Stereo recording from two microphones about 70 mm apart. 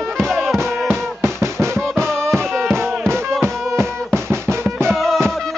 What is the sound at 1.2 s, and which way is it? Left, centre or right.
Music, right.